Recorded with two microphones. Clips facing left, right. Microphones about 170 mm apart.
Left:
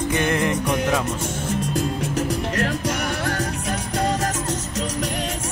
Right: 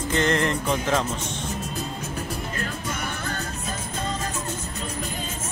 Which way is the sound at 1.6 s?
85° left.